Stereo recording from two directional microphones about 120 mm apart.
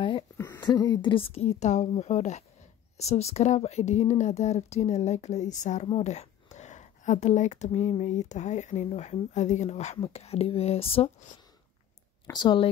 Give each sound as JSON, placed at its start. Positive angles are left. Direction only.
{"t": 0.6, "sound": "speech", "side_deg": 35}
{"t": 1.1, "sound": "speech", "side_deg": 55}
{"t": 6.0, "sound": "a sound", "side_deg": 70}
{"t": 8.0, "sound": "speech", "side_deg": 80}
{"t": 8.8, "sound": "speech", "side_deg": 60}
{"t": 9.9, "sound": "speech", "side_deg": 55}
{"t": 12.3, "sound": "speech", "side_deg": 40}